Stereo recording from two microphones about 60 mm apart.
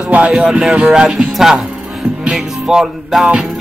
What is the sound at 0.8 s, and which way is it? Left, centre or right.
Music, centre.